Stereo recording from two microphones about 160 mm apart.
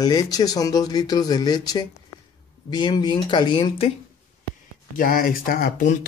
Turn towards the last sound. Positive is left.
turn(degrees=55)  # may be behind; listen again after turning